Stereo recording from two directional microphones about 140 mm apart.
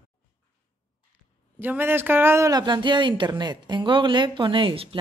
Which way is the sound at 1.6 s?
15° right (ahead or behind).